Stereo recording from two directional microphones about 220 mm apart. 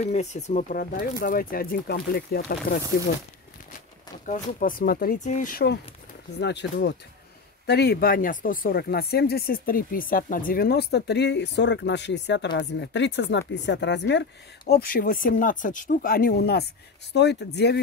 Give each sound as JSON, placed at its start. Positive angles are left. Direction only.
{"t": 0.0, "sound": "speech", "side_deg": 30}
{"t": 4.3, "sound": "speech", "side_deg": 35}
{"t": 14.7, "sound": "speech", "side_deg": 40}